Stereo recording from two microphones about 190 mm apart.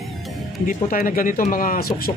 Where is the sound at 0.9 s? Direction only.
45° left (ahead or behind).